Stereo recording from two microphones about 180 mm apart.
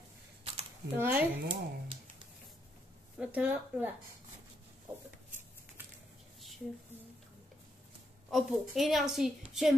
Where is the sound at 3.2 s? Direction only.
10° right (ahead or behind).